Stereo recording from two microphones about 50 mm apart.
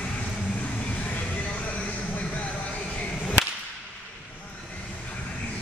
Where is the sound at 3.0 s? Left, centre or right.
Left.